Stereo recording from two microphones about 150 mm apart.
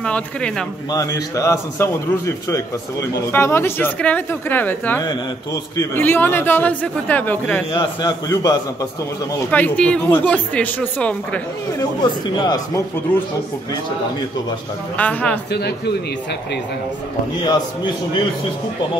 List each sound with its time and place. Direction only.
0.0 s a man's voice: 5° left (ahead or behind)
0.9 s a man's voice: 25° left (ahead or behind)
5.0 s speech: 25° left (ahead or behind)
5.9 s a man's voice: 15° left (ahead or behind)
7.7 s speech: 30° left (ahead or behind)
9.5 s a man's voice: 10° left (ahead or behind)
12.0 s speech: 30° left (ahead or behind)
15.0 s a man's voice: 10° left (ahead or behind)
15.5 s speech: 90° left
17.4 s speech: 30° left (ahead or behind)